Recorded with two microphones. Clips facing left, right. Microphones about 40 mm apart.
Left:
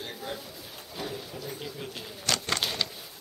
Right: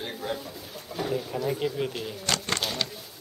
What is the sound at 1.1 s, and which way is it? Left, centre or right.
Speech, right.